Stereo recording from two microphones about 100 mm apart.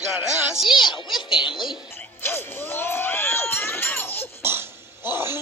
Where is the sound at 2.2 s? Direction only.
20° left (ahead or behind).